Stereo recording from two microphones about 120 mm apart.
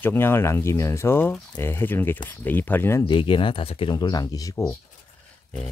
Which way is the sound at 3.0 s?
45° left (ahead or behind).